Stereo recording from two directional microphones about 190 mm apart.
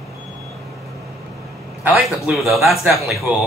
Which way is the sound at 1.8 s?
5° right (ahead or behind).